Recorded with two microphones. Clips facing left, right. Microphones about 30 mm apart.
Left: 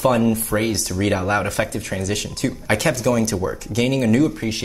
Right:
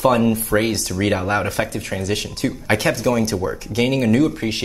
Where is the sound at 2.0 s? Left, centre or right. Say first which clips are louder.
Right 2 dB; right.